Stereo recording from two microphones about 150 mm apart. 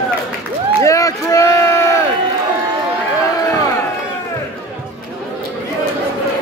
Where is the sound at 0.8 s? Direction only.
20° left (ahead or behind).